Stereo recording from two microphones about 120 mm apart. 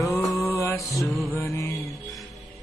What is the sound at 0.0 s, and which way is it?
Mantra, 25° left (ahead or behind).